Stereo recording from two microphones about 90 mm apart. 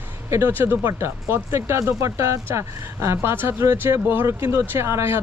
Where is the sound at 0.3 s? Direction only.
25° right (ahead or behind).